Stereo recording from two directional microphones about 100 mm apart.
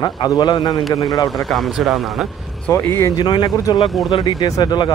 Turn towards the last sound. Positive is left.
turn(degrees=45)  # may be behind; listen again after turning